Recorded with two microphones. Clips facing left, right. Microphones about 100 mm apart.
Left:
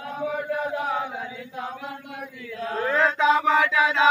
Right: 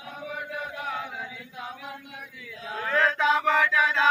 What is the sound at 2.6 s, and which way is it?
Speech, 50° left (ahead or behind).